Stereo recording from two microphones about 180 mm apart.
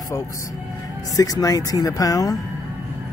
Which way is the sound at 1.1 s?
20° left (ahead or behind).